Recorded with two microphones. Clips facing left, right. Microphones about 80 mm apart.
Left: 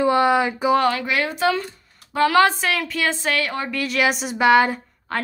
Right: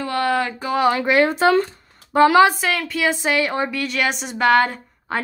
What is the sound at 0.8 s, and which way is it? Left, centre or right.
Speech, right.